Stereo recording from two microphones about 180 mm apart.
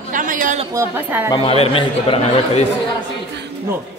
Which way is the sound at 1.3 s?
35° left (ahead or behind).